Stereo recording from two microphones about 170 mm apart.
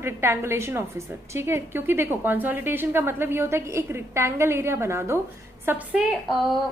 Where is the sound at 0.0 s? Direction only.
15° right (ahead or behind).